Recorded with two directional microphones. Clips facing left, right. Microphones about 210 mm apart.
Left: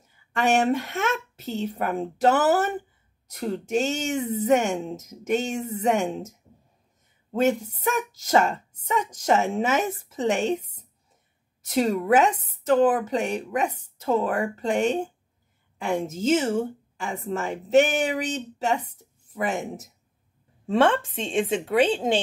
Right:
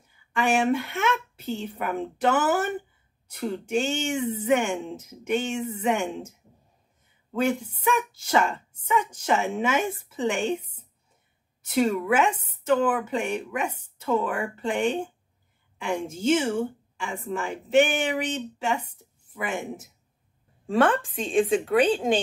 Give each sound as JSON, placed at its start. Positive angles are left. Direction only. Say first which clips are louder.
{"t": 0.4, "sound": "a woman's voice", "louder": "left 1 dB", "side_deg": 40}
{"t": 7.3, "sound": "a woman's voice", "louder": "left 3 dB", "side_deg": 40}
{"t": 11.6, "sound": "a woman's voice", "louder": "even", "side_deg": 40}
{"t": 16.1, "sound": "a woman's voice", "louder": "even", "side_deg": 40}
{"t": 20.6, "sound": "a woman's voice", "louder": "left 1 dB", "side_deg": 25}